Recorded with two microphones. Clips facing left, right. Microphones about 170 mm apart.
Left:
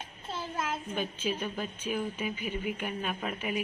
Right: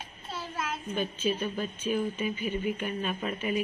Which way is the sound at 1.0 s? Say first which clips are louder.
Right 5 dB; 15° left (ahead or behind).